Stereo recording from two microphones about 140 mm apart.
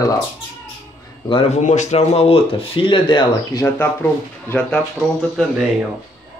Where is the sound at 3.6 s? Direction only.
15° left (ahead or behind).